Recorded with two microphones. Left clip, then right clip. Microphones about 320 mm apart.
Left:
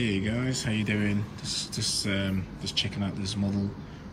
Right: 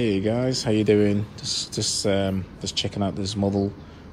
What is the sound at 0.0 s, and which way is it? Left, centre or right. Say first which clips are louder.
Speech: right 7 dB; centre.